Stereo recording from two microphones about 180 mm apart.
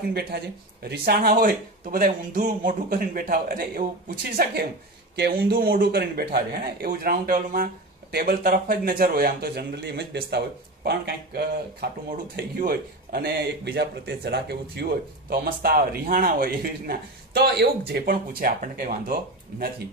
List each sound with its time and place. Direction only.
0.1 s speech: 60° right (ahead or behind)